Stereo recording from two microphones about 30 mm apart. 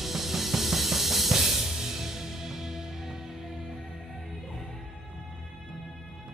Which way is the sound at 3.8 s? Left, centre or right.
Centre.